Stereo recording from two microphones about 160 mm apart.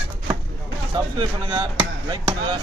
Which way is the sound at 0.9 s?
30° right (ahead or behind).